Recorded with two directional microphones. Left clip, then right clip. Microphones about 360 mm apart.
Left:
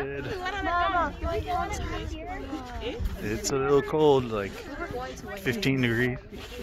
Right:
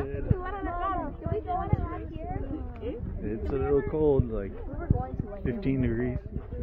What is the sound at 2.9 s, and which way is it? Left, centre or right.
Speech, centre.